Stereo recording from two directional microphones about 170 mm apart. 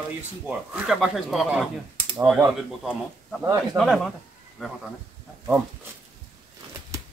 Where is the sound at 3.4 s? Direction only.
20° right (ahead or behind).